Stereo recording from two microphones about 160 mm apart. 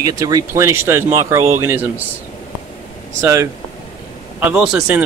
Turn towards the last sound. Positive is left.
turn(degrees=-5)  # may be behind; listen again after turning